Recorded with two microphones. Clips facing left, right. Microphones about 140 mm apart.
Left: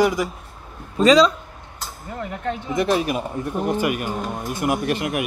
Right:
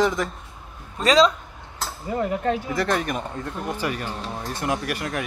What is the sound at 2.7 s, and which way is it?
Speech, 15° left (ahead or behind).